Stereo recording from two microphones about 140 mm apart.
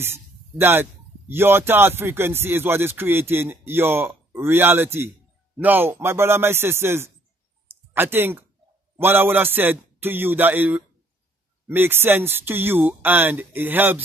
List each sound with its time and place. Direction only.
0.0 s a man's voice: 15° right (ahead or behind)